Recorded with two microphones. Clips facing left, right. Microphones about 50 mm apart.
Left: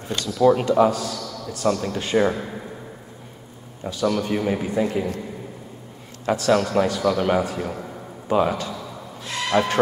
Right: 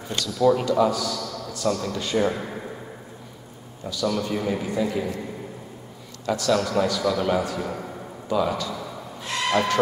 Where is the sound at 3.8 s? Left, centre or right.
Left.